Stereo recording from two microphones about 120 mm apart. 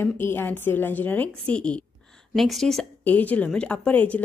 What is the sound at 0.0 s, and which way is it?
A woman's voice, 20° left (ahead or behind).